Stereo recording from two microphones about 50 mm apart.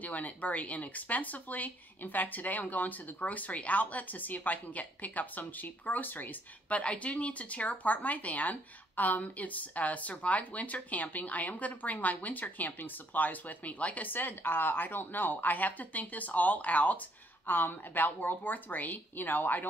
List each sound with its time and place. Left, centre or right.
0.0 s speech: left
6.7 s speech: left
14.0 s speech: left